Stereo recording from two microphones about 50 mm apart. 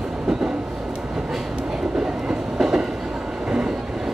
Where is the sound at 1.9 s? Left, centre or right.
Centre.